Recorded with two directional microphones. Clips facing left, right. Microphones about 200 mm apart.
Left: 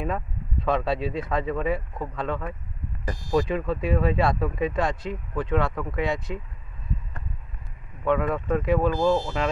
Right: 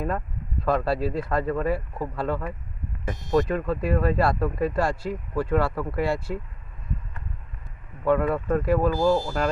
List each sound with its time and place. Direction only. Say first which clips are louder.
0.0 s speech: right 1 dB; centre (ahead or behind)
8.0 s speech: right 2 dB; 5° right (ahead or behind)
8.9 s speech: right 1 dB; 20° left (ahead or behind)